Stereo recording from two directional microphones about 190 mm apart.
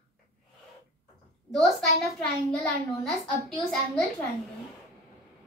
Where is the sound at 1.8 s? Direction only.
5° left (ahead or behind).